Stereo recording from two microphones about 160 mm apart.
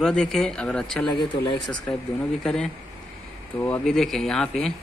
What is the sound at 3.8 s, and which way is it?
Speech, centre (ahead or behind).